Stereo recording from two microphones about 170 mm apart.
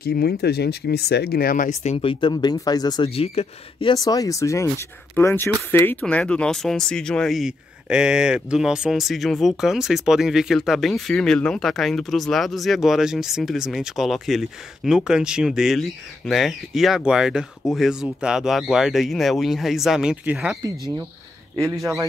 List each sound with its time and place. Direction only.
0.0 s speech: 65° left (ahead or behind); by 3.9 s 35° left (ahead or behind)
3.9 s speech: 20° left (ahead or behind); by 20.5 s 5° right (ahead or behind)